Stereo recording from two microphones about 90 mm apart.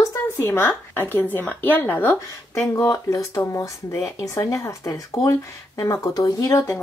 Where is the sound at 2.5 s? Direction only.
35° left (ahead or behind).